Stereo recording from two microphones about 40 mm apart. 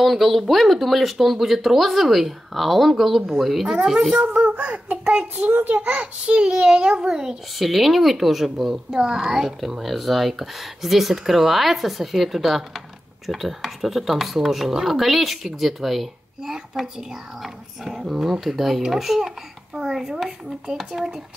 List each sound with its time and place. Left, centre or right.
0.0 s speech: centre
4.5 s a child's voice: right
5.5 s a child's voice: right
6.2 s a child's voice: right
7.5 s speech: centre
8.9 s a child's voice: centre
9.2 s speech: centre